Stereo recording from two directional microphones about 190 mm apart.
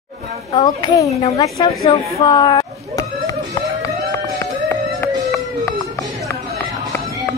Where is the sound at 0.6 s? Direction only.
20° left (ahead or behind).